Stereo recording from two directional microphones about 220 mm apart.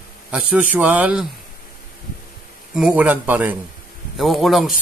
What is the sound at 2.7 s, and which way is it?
Speech, 5° right (ahead or behind).